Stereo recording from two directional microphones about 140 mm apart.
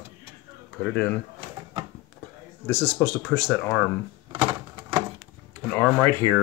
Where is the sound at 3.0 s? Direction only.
15° left (ahead or behind).